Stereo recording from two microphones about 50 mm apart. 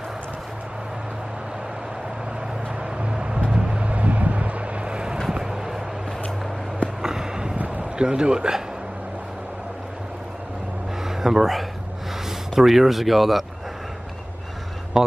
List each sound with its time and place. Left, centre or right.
3.0 s vehicle: right
5.3 s vehicle: centre
7.0 s a sound: centre
11.1 s speech: centre
15.0 s speech: centre